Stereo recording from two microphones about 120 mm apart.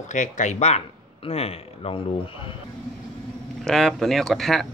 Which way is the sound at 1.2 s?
55° left (ahead or behind).